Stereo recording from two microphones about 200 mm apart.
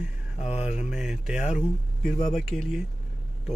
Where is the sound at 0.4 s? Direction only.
30° left (ahead or behind).